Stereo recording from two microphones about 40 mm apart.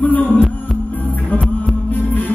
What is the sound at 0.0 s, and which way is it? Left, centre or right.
Music, left.